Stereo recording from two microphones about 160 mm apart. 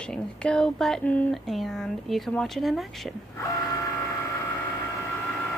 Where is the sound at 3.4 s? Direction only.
20° left (ahead or behind).